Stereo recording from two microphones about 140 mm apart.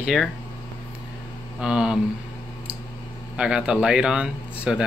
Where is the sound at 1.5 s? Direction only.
5° right (ahead or behind).